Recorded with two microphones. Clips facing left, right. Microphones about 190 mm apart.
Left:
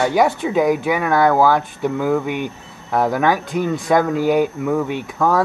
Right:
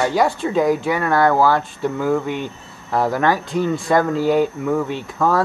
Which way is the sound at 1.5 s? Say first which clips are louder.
Left 1 dB; 15° left (ahead or behind).